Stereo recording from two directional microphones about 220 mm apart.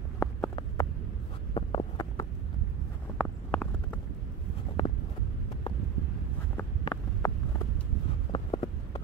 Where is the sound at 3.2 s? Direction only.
5° left (ahead or behind).